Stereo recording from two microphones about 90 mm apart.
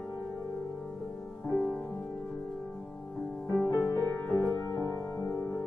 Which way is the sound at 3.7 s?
35° left (ahead or behind).